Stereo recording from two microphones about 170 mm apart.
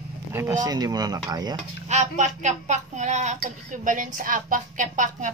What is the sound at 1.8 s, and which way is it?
Speech, 45° right (ahead or behind).